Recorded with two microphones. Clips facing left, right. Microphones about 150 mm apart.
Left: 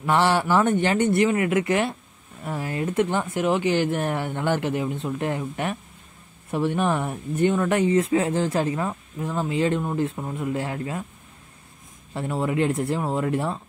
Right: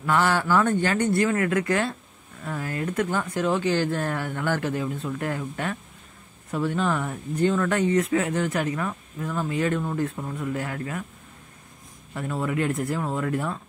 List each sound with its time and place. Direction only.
0.0 s speech: 25° left (ahead or behind)
12.1 s speech: 25° left (ahead or behind)